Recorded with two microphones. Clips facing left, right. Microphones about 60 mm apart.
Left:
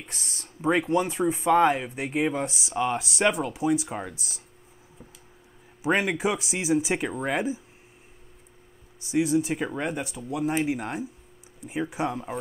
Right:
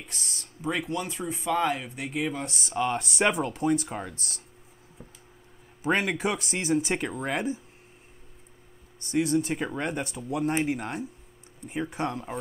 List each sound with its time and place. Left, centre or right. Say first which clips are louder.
0.4 s speech: left 7 dB; left
2.4 s speech: left 1 dB; centre
5.8 s speech: left 2 dB; centre
9.0 s speech: left 2 dB; centre